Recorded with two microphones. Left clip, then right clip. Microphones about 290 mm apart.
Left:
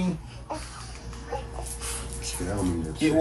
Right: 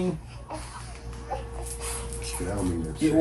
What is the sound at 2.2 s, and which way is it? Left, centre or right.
Speech, centre.